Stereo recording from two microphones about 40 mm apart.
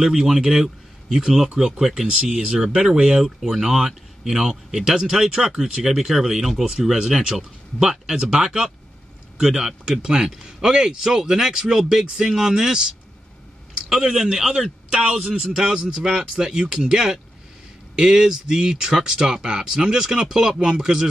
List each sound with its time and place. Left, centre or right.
0.0 s speech: centre
13.7 s speech: centre